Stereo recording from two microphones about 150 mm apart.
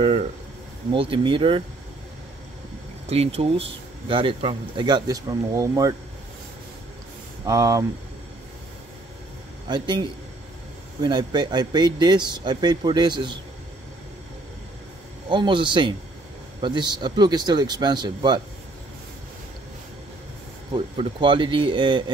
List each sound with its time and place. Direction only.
0.9 s speech: 35° right (ahead or behind)
3.1 s speech: 45° right (ahead or behind); by 5.9 s 20° right (ahead or behind)
7.4 s speech: 20° right (ahead or behind)
9.7 s speech: 30° right (ahead or behind)
15.2 s speech: 30° right (ahead or behind)
20.7 s speech: 35° right (ahead or behind)